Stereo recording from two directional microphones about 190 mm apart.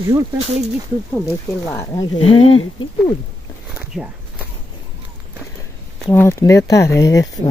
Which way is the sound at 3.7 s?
10° right (ahead or behind).